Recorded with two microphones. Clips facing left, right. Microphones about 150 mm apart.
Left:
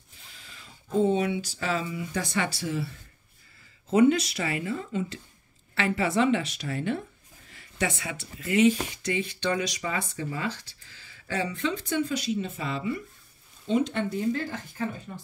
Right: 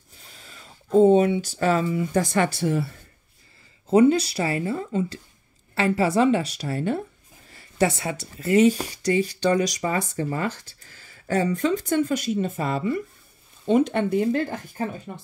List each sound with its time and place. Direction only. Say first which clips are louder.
0.3 s speech: right 3 dB; 40° right (ahead or behind)
3.9 s speech: right 4 dB; 35° right (ahead or behind); by 14.6 s 65° right (ahead or behind)